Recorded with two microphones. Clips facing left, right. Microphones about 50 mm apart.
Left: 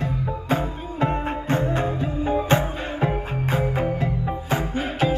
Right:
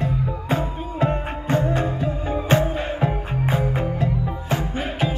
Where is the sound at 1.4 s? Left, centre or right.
Centre.